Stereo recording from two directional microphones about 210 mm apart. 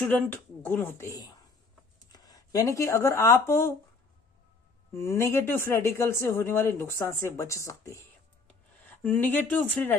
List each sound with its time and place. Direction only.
0.1 s speech: 10° left (ahead or behind)
4.9 s speech: 15° left (ahead or behind)